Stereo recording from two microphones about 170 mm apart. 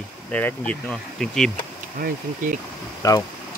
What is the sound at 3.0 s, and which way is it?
Speech, 20° left (ahead or behind).